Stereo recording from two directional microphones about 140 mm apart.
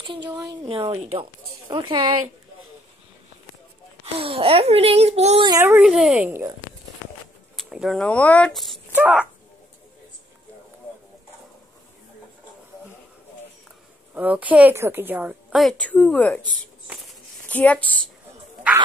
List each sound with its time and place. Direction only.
0.0 s speech: 35° right (ahead or behind)
0.7 s speech: 45° right (ahead or behind)
1.7 s speech: 35° right (ahead or behind)
4.0 s speech: 40° right (ahead or behind)
5.6 s a woman's voice: 15° right (ahead or behind)
5.9 s a woman's voice: 5° right (ahead or behind)
7.5 s speech: centre (ahead or behind)
8.9 s a woman's voice: 10° right (ahead or behind)
14.1 s a woman's voice: 10° right (ahead or behind)
15.5 s a woman's voice: 5° left (ahead or behind)
17.5 s speech: 10° left (ahead or behind)